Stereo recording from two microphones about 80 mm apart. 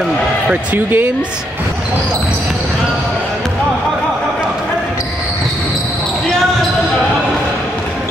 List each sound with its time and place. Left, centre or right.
0.7 s speech: right